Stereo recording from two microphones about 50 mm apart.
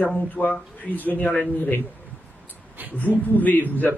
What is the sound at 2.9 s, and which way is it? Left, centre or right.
A man's voice, left.